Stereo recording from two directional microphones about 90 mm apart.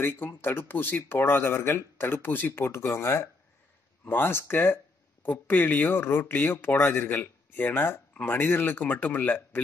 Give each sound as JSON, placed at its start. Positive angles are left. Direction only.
{"t": 0.0, "sound": "speech", "side_deg": 25}